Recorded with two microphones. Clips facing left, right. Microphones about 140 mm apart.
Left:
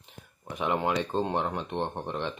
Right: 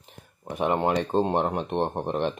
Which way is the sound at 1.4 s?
50° right (ahead or behind).